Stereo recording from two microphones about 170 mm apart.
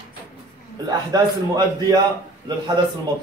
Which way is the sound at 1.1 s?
25° right (ahead or behind).